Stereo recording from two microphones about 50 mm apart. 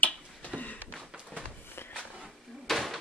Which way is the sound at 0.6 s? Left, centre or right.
Left.